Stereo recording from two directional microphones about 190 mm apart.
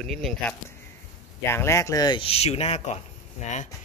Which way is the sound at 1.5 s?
15° left (ahead or behind).